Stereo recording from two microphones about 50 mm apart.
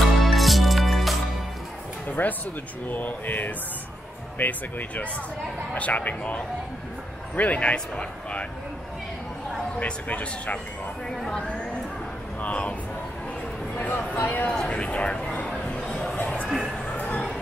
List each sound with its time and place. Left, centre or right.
0.0 s music: centre
2.0 s a sound: left
2.9 s speech: left
10.0 s speech: left
12.4 s speech: left
13.7 s speech: left
14.5 s speech: left
15.3 s a sound: centre
16.9 s a sound: left